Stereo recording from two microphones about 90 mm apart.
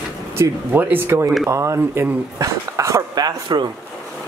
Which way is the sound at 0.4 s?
20° right (ahead or behind).